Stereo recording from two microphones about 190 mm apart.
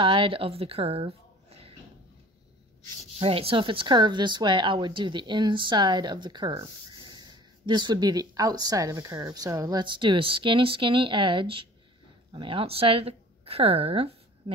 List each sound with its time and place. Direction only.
0.0 s a woman's voice: 25° right (ahead or behind)
3.2 s a woman's voice: 30° right (ahead or behind)